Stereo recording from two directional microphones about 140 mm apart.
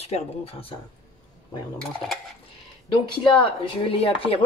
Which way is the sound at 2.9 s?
35° left (ahead or behind).